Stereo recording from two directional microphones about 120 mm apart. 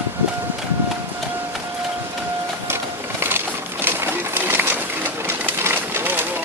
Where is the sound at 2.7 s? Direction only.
20° right (ahead or behind).